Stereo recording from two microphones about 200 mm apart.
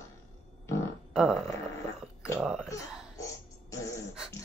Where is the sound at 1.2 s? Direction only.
5° right (ahead or behind).